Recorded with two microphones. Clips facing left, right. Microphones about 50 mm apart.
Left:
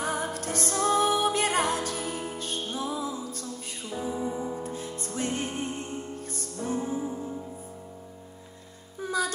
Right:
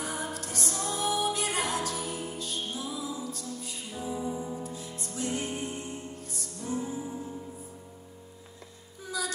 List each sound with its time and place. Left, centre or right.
0.0 s music: left
9.0 s music: left